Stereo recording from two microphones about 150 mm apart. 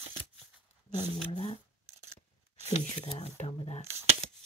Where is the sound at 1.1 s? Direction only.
40° left (ahead or behind).